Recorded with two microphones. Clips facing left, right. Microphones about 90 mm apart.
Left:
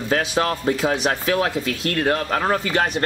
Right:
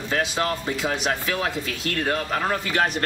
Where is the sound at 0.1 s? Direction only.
45° left (ahead or behind).